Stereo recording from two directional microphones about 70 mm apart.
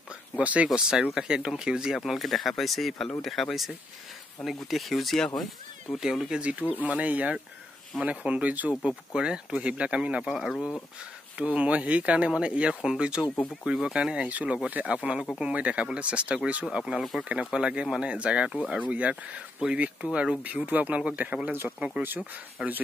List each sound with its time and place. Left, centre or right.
0.4 s speech: centre
5.9 s speech: centre
11.3 s speech: centre
20.4 s speech: right
21.7 s speech: centre